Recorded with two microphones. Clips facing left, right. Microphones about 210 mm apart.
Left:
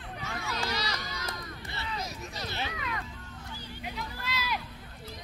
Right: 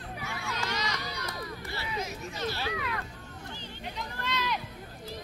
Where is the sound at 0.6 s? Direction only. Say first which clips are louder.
Even; 35° left (ahead or behind).